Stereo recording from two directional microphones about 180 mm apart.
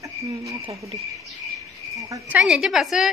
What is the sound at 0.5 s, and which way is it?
Speech, 30° right (ahead or behind).